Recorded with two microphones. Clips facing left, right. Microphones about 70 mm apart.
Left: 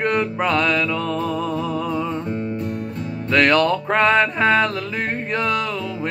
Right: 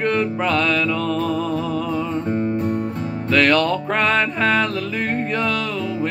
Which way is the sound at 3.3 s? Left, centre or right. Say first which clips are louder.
Left 1 dB; left.